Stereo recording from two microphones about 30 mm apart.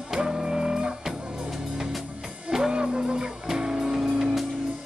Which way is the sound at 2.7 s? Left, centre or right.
Right.